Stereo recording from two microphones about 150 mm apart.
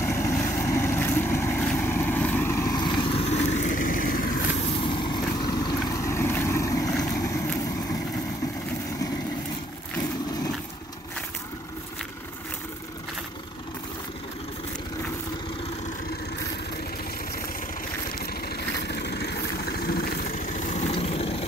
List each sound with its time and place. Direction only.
0.0 s vehicle: 15° left (ahead or behind)
0.4 s boat: 10° left (ahead or behind)
1.7 s vehicle: 10° left (ahead or behind); by 4.4 s 70° left (ahead or behind)
4.6 s vehicle: 40° left (ahead or behind); by 7.4 s 20° left (ahead or behind)
18.2 s vehicle: 90° left; by 21.5 s 40° left (ahead or behind)